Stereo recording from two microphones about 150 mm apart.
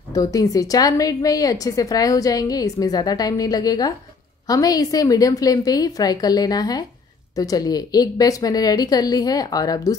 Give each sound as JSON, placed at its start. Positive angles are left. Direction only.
{"t": 0.1, "sound": "a woman's voice", "side_deg": 25}